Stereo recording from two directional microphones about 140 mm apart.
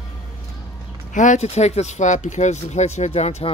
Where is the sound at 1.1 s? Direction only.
60° left (ahead or behind).